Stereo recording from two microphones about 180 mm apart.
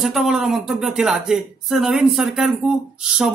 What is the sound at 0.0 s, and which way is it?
Speech, 5° right (ahead or behind).